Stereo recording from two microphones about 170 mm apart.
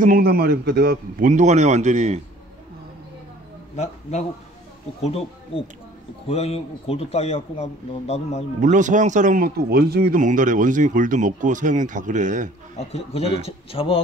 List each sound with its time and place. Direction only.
0.0 s a man's voice: 60° right (ahead or behind)
1.3 s speech: 45° right (ahead or behind)
3.7 s a man's voice: 40° left (ahead or behind)
8.5 s speech: 45° right (ahead or behind)
12.7 s a man's voice: 35° left (ahead or behind)